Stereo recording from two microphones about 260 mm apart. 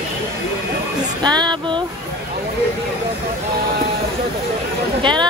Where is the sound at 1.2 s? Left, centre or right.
Centre.